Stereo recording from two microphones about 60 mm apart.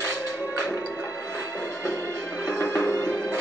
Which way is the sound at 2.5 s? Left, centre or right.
Left.